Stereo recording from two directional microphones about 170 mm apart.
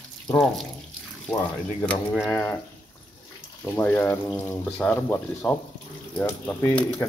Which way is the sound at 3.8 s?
10° left (ahead or behind).